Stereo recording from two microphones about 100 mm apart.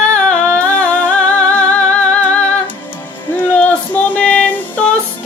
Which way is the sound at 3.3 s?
15° left (ahead or behind).